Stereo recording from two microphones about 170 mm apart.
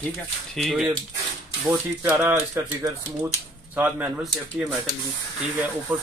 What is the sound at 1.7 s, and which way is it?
Speech, 15° right (ahead or behind).